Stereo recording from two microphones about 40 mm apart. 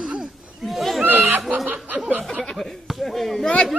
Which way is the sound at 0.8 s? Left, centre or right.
Centre.